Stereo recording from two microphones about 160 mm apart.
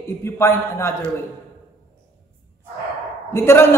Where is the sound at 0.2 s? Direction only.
15° left (ahead or behind).